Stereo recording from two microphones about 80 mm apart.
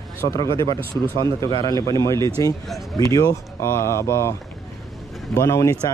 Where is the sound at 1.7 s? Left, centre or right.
Left.